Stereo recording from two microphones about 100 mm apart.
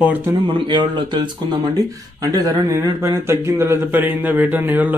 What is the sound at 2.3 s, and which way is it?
Speech, 40° right (ahead or behind).